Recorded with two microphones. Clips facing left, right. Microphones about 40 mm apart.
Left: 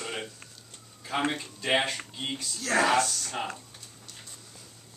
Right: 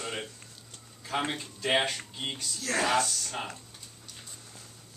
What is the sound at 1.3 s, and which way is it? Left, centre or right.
Speech, centre.